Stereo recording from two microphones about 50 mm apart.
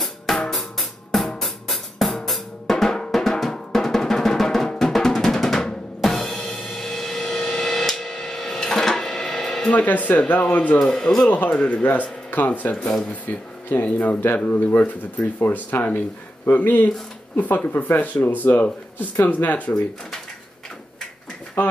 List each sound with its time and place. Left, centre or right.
0.0 s drum kit: centre
2.2 s drum: centre
6.0 s music: centre
9.7 s speech: left
10.8 s a man's voice: centre
11.2 s speech: left
11.5 s a man's voice: centre
11.8 s speech: left
12.7 s a man's voice: centre
13.8 s speech: left
18.0 s speech: left
21.6 s speech: left